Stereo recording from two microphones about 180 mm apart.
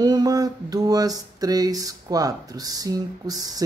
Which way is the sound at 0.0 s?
20° right (ahead or behind).